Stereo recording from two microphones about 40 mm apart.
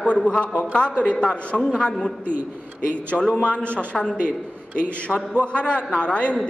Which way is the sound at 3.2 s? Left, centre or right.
Left.